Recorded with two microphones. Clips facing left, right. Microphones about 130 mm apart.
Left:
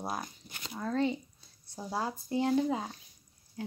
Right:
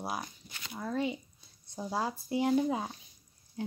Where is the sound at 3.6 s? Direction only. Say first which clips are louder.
Right 2 dB; 25° right (ahead or behind).